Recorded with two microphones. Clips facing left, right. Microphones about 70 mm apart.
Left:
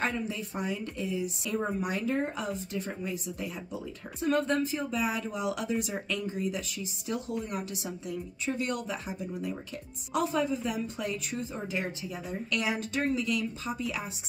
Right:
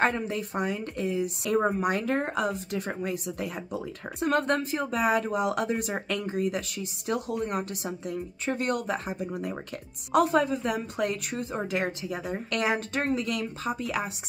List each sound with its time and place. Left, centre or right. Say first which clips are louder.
0.0 s speech: right 6 dB; right